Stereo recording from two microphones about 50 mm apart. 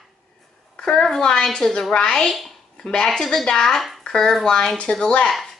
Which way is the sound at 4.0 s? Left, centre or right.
Centre.